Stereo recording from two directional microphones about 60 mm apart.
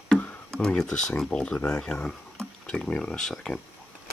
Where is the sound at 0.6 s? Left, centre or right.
Centre.